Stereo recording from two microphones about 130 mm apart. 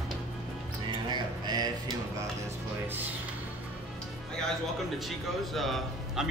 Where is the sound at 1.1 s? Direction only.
35° right (ahead or behind).